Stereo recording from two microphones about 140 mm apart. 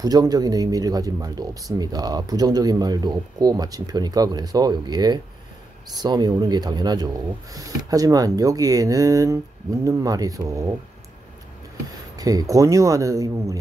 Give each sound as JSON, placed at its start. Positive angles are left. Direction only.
{"t": 0.0, "sound": "speech", "side_deg": -25}
{"t": 12.2, "sound": "speech", "side_deg": -25}